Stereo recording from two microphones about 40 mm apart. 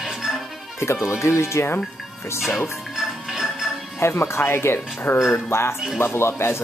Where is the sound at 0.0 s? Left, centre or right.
Centre.